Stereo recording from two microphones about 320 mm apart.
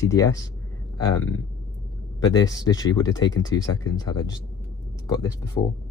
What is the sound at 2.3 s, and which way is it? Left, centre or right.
Speech, centre.